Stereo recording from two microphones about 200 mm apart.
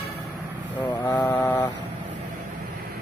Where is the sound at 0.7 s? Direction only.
20° left (ahead or behind).